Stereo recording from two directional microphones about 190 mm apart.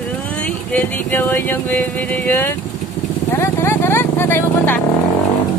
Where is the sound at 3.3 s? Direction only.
15° left (ahead or behind).